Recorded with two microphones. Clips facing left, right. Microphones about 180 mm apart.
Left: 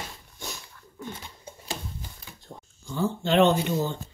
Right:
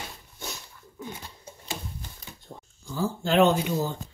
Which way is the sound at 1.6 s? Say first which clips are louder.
Left 1 dB; 5° left (ahead or behind).